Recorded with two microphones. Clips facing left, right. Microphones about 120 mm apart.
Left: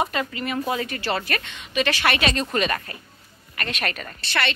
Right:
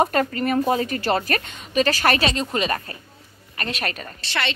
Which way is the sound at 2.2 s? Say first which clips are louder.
Even; 25° right (ahead or behind).